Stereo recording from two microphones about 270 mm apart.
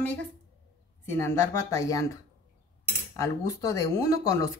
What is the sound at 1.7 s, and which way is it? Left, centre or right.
Speech, centre.